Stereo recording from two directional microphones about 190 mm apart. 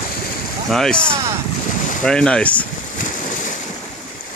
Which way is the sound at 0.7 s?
Centre (ahead or behind).